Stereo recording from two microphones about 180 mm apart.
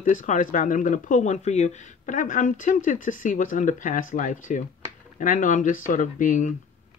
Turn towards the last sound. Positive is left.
turn(degrees=45)  # may be behind; listen again after turning